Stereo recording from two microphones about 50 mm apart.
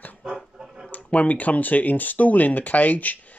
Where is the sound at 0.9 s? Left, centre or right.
Left.